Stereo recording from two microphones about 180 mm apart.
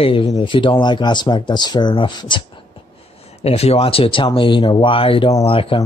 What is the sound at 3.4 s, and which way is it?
Speech, 35° left (ahead or behind).